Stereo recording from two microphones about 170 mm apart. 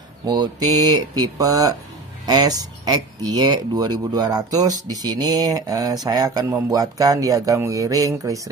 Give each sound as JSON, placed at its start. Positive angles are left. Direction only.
{"t": 0.2, "sound": "speech", "side_deg": -20}